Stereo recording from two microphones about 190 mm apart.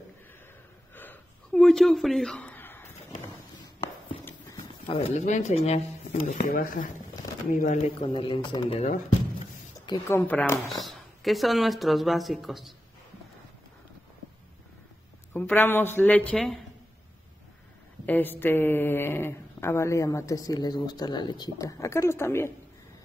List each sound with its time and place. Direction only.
0.9 s a sound: 10° left (ahead or behind)
4.8 s speech: 35° left (ahead or behind)
8.1 s a woman's voice: 25° left (ahead or behind); by 12.7 s centre (ahead or behind)
15.3 s speech: 10° left (ahead or behind)
18.0 s speech: 10° left (ahead or behind)